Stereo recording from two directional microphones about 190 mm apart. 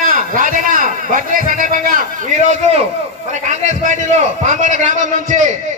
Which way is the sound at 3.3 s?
40° right (ahead or behind).